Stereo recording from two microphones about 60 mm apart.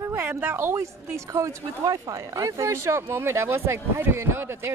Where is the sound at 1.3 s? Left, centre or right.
Right.